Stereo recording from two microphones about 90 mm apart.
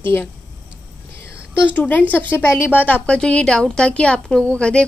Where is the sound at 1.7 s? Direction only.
20° left (ahead or behind).